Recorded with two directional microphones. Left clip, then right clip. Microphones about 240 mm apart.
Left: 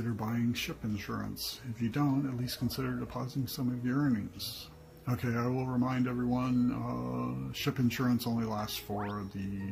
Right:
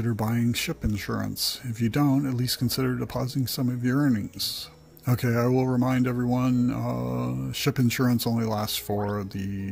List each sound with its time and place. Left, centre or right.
0.1 s speech: right